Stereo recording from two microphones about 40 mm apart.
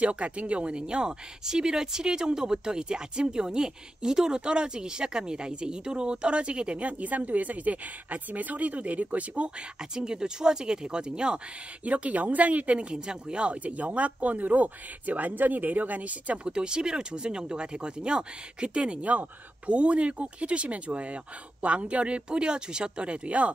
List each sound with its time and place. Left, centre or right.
0.0 s speech: right
9.8 s speech: centre; by 12.8 s right
12.9 s speech: right
16.4 s speech: right